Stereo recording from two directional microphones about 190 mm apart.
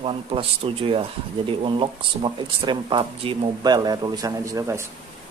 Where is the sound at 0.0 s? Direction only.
30° right (ahead or behind).